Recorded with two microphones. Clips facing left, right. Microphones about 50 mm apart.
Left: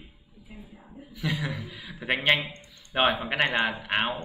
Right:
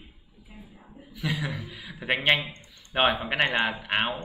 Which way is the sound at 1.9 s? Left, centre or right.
Centre.